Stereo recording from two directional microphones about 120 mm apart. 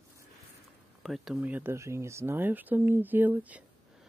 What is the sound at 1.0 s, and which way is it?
Speech, centre (ahead or behind).